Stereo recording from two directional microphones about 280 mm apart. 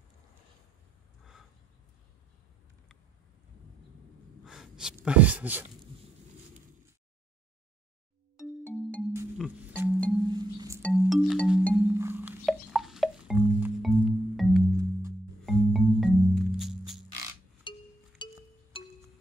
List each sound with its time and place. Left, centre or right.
4.5 s speech: centre
8.4 s music: centre
9.1 s music: centre
10.8 s music: centre
14.8 s music: centre
15.4 s music: centre
17.7 s music: centre